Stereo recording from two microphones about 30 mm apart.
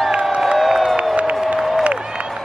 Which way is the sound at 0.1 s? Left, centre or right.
Right.